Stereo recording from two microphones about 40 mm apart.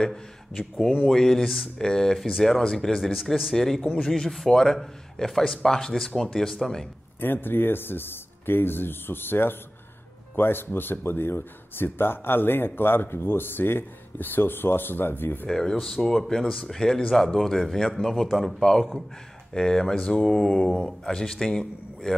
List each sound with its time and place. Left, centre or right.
1.0 s a man's voice: centre
7.2 s speech: left
15.5 s a man's voice: centre